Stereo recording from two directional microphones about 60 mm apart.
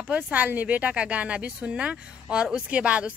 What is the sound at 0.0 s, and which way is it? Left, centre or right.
A woman's voice, right.